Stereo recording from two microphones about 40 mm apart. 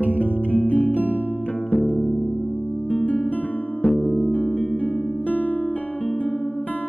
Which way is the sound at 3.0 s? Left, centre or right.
Left.